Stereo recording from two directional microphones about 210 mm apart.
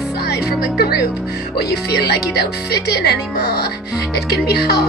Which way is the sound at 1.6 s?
50° left (ahead or behind).